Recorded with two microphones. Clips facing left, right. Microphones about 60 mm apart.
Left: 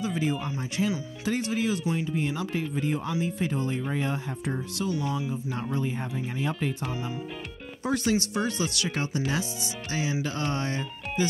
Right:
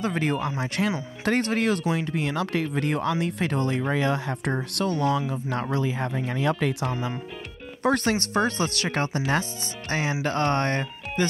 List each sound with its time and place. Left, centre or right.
0.0 s speech: right
7.8 s speech: right